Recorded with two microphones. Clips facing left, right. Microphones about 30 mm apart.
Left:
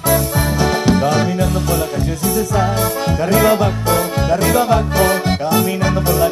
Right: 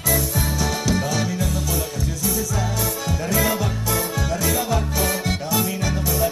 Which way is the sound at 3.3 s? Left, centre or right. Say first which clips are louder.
Left 9 dB; left.